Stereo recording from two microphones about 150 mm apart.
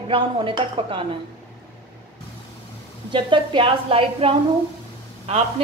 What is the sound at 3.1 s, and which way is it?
A woman's voice, 30° right (ahead or behind).